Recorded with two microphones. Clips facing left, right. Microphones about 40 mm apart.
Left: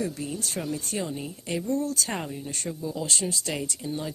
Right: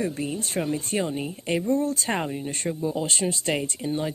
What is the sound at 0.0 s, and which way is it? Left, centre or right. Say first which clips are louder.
A woman's voice: right 3 dB; right.